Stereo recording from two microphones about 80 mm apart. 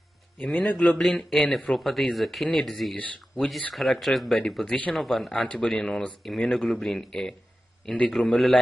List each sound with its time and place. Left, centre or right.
0.4 s speech: centre
4.6 s speech: centre
4.9 s speech: centre